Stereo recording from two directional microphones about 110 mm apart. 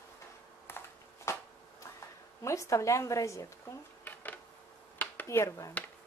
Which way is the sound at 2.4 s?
25° left (ahead or behind).